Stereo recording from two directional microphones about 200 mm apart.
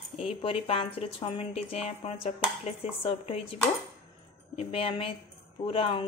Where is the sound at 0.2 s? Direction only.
30° left (ahead or behind).